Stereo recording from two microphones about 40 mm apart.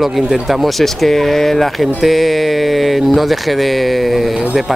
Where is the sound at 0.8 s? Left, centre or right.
Centre.